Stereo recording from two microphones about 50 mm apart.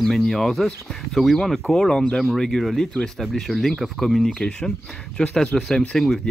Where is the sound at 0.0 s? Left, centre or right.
Centre.